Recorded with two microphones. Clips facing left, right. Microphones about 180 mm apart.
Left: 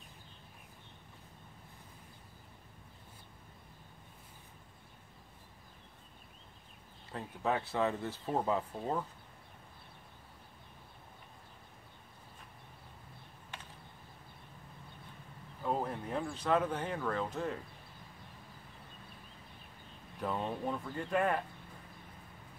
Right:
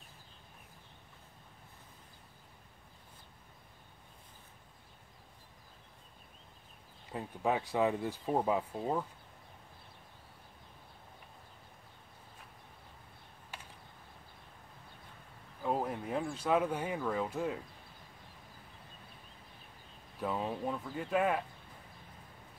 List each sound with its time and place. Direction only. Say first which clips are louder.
7.1 s speech: right 1 dB; 10° right (ahead or behind)
15.6 s a sound: right 1 dB; 5° right (ahead or behind)
20.2 s speech: right 1 dB; 5° right (ahead or behind)